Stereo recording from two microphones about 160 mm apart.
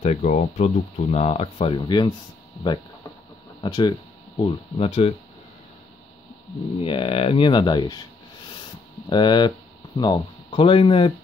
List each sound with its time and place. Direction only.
0.0 s speech: 45° left (ahead or behind)
1.8 s speech: 25° left (ahead or behind)
3.6 s speech: 25° left (ahead or behind)
6.8 s speech: 35° left (ahead or behind)
9.1 s speech: 30° left (ahead or behind)